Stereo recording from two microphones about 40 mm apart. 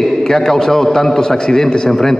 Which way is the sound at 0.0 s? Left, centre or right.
Centre.